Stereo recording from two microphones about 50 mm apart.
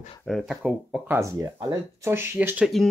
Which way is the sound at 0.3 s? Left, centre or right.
Centre.